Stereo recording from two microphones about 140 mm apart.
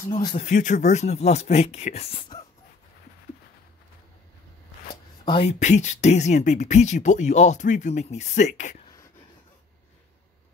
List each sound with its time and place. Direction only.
0.1 s speech: 30° left (ahead or behind)
0.4 s speech: 60° left (ahead or behind); by 2.4 s 40° left (ahead or behind)
5.2 s speech: 35° left (ahead or behind)
5.5 s speech: 55° left (ahead or behind)